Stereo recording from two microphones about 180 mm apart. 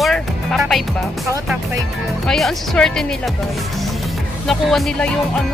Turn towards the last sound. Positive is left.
turn(degrees=5)  # may be behind; listen again after turning